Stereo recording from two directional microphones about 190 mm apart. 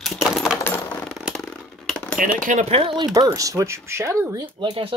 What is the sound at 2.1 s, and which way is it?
Speech, 40° right (ahead or behind).